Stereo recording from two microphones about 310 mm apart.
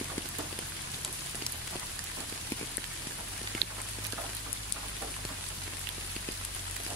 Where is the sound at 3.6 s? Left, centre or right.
Right.